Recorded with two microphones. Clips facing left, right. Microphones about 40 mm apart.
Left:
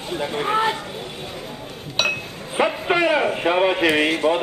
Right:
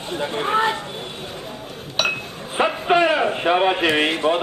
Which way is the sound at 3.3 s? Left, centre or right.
Centre.